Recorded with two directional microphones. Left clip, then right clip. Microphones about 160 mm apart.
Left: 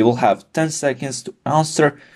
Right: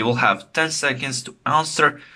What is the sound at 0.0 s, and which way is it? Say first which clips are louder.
Speech: left 3 dB; 45° left (ahead or behind).